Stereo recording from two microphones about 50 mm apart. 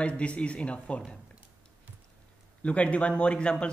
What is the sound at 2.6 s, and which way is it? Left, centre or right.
Speech, left.